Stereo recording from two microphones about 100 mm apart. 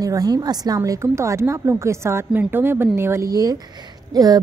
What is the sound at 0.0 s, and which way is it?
A woman's voice, 40° right (ahead or behind).